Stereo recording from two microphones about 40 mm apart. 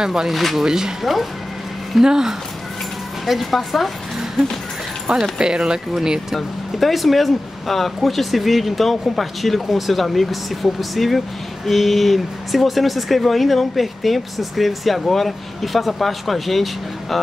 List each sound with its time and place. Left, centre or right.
0.0 s speech: centre
0.3 s speech: centre
0.7 s speech: centre
2.0 s speech: centre
3.3 s speech: centre
5.1 s speech: right
6.3 s speech: centre